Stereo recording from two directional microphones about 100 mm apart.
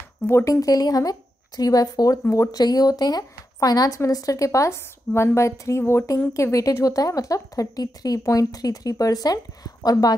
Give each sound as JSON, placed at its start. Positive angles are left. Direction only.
{"t": 0.5, "sound": "speech", "side_deg": 35}